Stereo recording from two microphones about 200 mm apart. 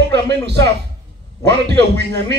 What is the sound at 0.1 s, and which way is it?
A man's voice, 55° right (ahead or behind).